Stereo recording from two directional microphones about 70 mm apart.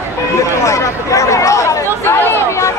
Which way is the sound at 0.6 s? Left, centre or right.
Left.